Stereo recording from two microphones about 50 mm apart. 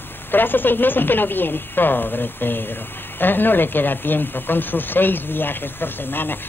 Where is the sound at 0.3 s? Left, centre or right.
Left.